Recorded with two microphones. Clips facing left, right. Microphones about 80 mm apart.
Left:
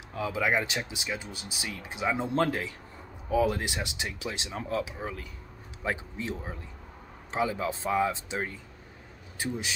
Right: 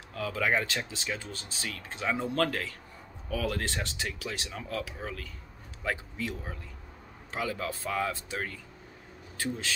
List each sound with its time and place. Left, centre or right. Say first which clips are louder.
0.1 s speech: left 1 dB; centre